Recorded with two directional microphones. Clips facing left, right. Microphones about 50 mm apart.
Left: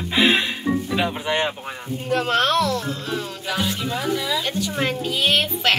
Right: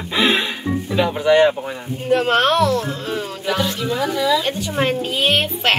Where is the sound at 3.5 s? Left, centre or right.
Centre.